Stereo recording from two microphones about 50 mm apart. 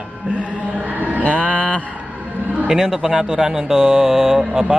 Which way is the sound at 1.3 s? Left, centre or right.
Right.